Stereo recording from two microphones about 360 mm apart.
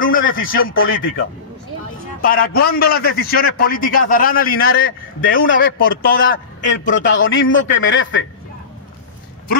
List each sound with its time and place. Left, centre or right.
0.0 s a man's voice: left